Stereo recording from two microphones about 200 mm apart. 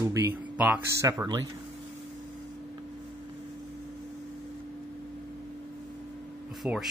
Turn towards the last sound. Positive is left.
turn(degrees=0)  # may be behind; listen again after turning